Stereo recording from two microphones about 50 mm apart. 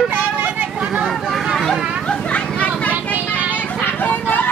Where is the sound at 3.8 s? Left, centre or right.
Left.